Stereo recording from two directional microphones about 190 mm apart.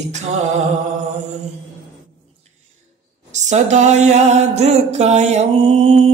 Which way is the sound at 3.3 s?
40° right (ahead or behind).